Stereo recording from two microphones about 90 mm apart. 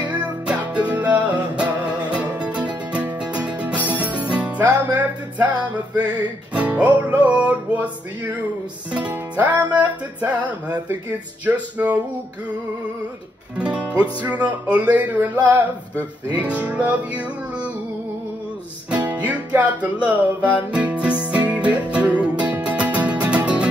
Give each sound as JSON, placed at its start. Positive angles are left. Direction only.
{"t": 0.0, "sound": "music", "side_deg": -15}
{"t": 13.6, "sound": "music", "side_deg": -15}
{"t": 16.3, "sound": "music", "side_deg": -15}
{"t": 19.0, "sound": "music", "side_deg": -15}